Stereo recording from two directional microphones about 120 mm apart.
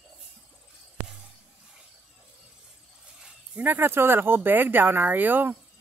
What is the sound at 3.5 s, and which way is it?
Speech, 15° right (ahead or behind).